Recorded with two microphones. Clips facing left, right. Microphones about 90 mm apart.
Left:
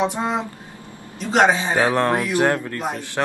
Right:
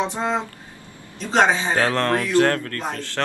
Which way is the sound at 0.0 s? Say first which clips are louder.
Left 1 dB; 10° left (ahead or behind).